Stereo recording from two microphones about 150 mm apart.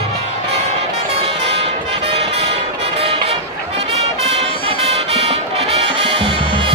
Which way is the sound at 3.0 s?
40° right (ahead or behind).